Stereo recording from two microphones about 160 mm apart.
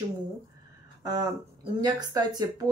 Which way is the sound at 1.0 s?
25° right (ahead or behind).